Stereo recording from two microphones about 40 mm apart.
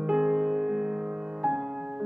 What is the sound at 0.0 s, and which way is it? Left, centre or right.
Music, centre.